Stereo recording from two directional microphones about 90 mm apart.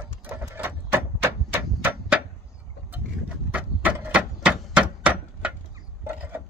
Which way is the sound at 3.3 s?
15° right (ahead or behind).